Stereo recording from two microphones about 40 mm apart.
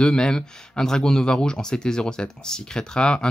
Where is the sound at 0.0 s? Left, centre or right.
Centre.